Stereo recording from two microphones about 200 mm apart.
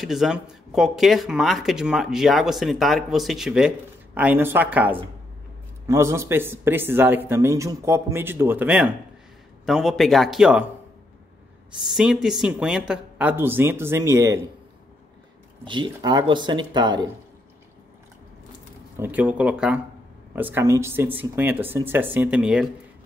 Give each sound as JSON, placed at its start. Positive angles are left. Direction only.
{"t": 0.0, "sound": "speech", "side_deg": 0}
{"t": 11.9, "sound": "speech", "side_deg": 0}
{"t": 15.6, "sound": "speech", "side_deg": -25}
{"t": 18.9, "sound": "speech", "side_deg": -10}